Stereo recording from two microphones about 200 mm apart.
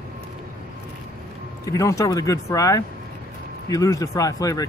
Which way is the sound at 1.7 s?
15° left (ahead or behind).